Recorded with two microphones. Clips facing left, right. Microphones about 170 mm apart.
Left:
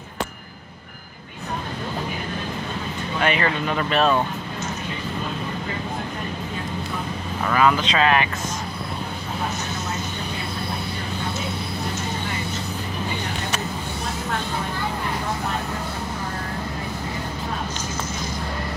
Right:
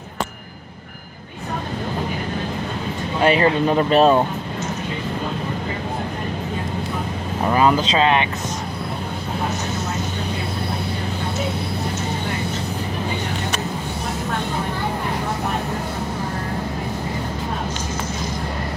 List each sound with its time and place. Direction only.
3.2 s speech: 30° right (ahead or behind)
7.4 s speech: 30° right (ahead or behind)